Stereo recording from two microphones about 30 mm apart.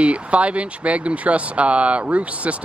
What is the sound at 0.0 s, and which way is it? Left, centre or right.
Speech, right.